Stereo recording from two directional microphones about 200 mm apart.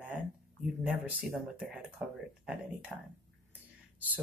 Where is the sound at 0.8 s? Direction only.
5° right (ahead or behind).